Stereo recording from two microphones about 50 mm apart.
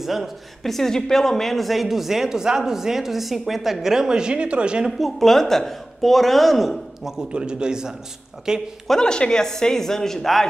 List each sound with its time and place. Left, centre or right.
0.0 s speech: centre; by 4.8 s right
4.8 s speech: centre
7.2 s a man's voice: centre
8.8 s speech: centre